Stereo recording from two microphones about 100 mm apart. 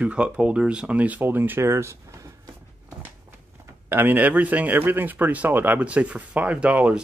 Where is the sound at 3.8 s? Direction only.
20° right (ahead or behind).